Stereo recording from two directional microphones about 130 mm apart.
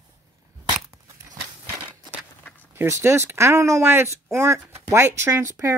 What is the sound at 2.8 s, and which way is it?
Speech, 20° right (ahead or behind).